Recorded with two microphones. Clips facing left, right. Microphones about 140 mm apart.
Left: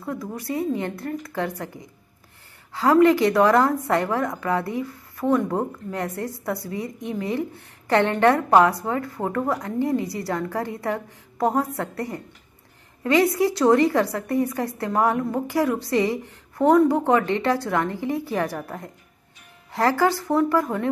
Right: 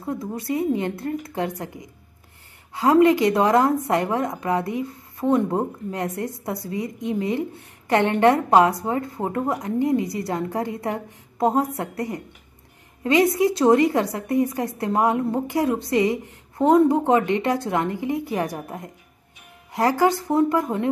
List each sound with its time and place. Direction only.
0.0 s a woman's voice: 25° right (ahead or behind)